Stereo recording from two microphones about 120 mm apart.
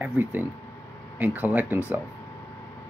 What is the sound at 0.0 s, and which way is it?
Speech, 15° right (ahead or behind).